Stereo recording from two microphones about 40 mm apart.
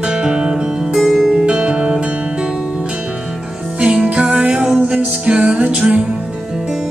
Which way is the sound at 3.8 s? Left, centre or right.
Right.